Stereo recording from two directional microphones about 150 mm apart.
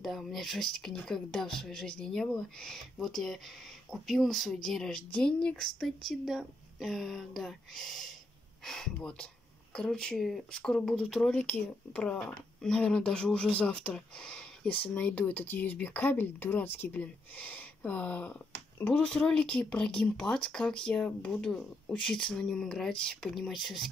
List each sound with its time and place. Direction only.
0.0 s speech: centre (ahead or behind)